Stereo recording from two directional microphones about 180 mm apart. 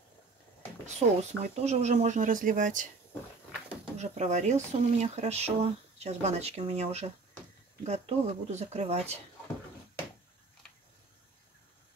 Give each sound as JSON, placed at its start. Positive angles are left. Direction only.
{"t": 0.8, "sound": "speech", "side_deg": -40}
{"t": 4.0, "sound": "speech", "side_deg": -40}